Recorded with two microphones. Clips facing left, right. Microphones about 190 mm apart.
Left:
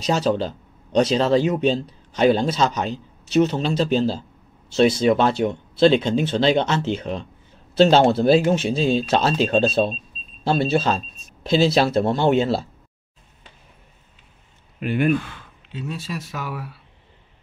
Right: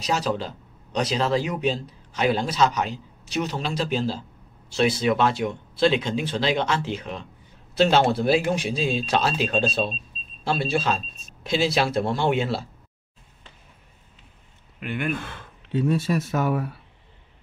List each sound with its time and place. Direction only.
0.0 s a man's voice: 25° left (ahead or behind)
14.8 s a man's voice: 25° left (ahead or behind)
15.1 s speech: 55° right (ahead or behind)